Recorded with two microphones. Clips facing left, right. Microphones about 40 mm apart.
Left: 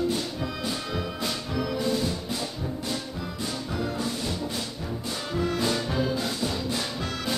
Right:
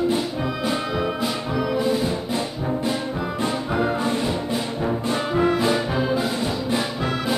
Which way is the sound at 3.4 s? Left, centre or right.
Right.